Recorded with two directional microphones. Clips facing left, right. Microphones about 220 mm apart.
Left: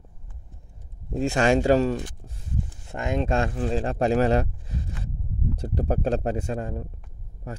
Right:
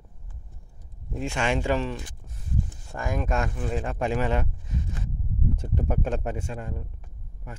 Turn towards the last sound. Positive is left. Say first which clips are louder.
# left 5 dB
turn(degrees=40)  # may be behind; listen again after turning